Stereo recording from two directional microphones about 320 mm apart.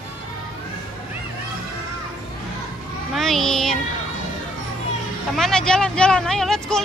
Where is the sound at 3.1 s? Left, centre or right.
Centre.